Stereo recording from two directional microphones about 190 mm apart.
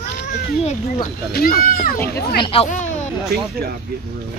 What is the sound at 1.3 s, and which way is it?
Speech, 50° left (ahead or behind).